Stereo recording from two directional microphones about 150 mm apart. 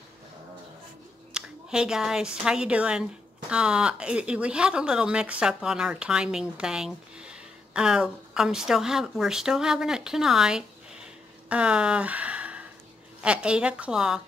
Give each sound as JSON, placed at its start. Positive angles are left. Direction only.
{"t": 1.3, "sound": "a woman's voice", "side_deg": -5}